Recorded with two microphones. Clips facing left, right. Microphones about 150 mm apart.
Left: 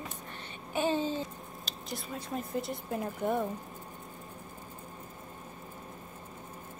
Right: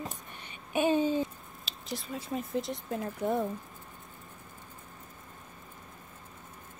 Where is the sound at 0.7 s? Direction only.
15° right (ahead or behind).